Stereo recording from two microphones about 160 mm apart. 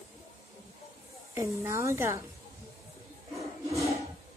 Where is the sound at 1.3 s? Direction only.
15° right (ahead or behind).